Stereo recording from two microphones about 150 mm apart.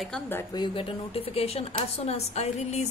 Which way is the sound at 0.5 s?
35° left (ahead or behind).